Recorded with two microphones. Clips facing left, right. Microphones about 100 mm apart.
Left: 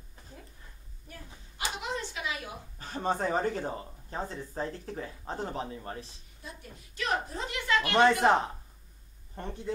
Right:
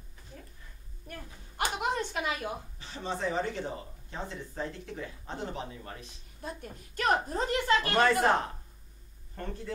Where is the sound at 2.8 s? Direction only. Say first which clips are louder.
Left 6 dB; 45° left (ahead or behind).